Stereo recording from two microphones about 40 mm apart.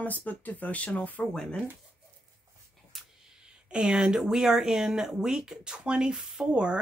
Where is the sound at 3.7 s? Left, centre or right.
Centre.